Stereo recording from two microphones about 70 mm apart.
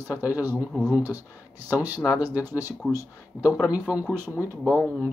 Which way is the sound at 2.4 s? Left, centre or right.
Right.